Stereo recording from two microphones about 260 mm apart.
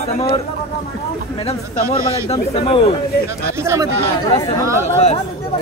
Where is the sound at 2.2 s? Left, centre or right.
Left.